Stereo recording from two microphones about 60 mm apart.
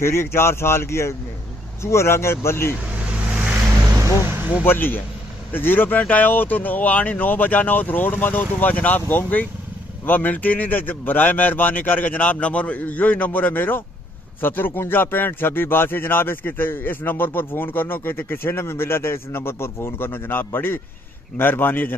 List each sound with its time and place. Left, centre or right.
0.0 s speech: left
3.3 s vehicle: right
4.6 s speech: left